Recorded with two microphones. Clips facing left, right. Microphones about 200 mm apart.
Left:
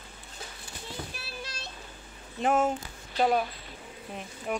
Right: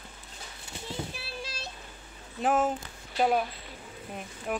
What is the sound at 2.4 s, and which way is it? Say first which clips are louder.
Speech: left 1 dB; centre (ahead or behind).